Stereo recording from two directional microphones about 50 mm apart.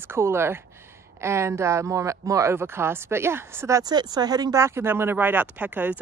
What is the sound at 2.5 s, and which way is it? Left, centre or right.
Speech, right.